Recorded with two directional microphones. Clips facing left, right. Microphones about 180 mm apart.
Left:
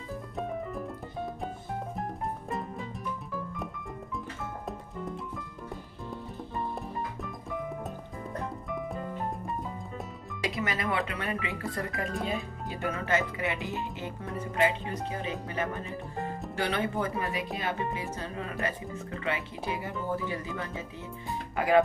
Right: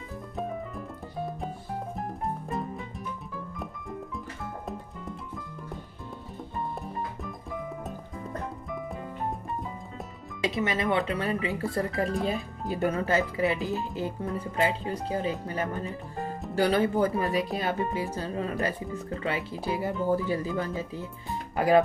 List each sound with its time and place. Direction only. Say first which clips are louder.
10.4 s speech: right 4 dB; 25° right (ahead or behind)